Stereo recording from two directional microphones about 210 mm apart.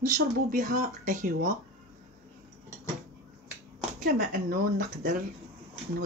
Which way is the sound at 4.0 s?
45° right (ahead or behind).